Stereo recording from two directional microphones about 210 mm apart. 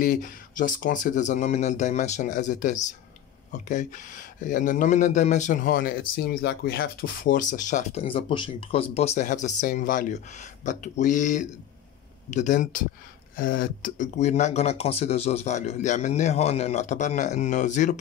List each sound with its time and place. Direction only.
0.0 s speech: 40° left (ahead or behind)